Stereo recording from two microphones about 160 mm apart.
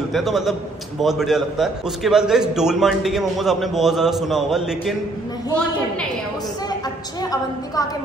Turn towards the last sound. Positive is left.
turn(degrees=20)  # may be behind; listen again after turning